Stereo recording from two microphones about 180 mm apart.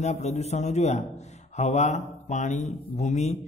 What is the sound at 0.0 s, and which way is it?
A man's voice, 40° left (ahead or behind).